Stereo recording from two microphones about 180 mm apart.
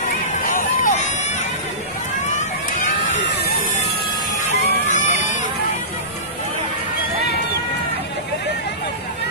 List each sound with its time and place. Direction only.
0.4 s run: 50° left (ahead or behind)
4.5 s run: 40° left (ahead or behind)